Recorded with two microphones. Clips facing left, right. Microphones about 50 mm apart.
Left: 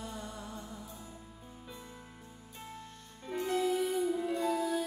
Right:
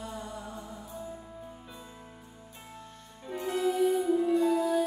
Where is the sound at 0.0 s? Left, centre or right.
Centre.